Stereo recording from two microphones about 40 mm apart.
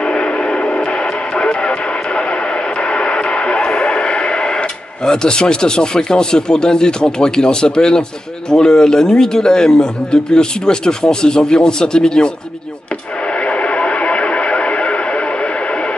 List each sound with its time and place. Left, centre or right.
0.0 s a sound: left
1.3 s radio: left
8.5 s speech: centre
13.5 s radio: left